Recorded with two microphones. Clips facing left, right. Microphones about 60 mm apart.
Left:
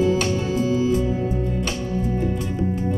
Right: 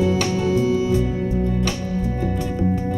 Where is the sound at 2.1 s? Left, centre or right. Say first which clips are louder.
Even; right.